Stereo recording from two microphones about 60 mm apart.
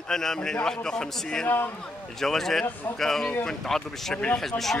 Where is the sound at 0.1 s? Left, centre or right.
Centre.